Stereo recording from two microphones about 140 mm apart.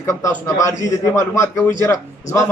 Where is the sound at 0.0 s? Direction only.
20° left (ahead or behind).